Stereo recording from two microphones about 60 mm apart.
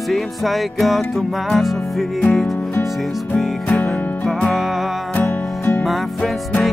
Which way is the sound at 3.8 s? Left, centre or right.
Centre.